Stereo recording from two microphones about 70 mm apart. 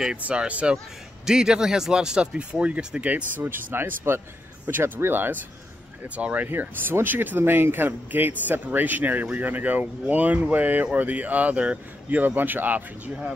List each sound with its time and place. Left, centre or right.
0.2 s speech: centre